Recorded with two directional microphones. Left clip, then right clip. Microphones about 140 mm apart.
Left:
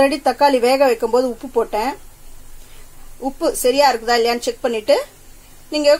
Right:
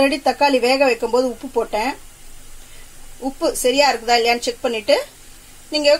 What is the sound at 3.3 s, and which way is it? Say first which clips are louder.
Speech: left 1 dB; centre (ahead or behind).